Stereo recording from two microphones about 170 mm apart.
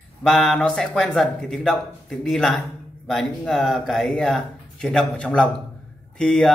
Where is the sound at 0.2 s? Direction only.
Centre (ahead or behind).